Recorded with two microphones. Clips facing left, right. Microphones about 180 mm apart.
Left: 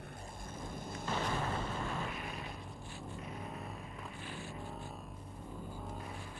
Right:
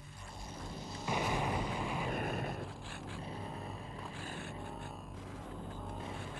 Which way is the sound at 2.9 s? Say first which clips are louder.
Even; 90° right.